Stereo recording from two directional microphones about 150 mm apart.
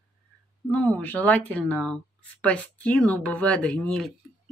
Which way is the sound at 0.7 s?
10° left (ahead or behind).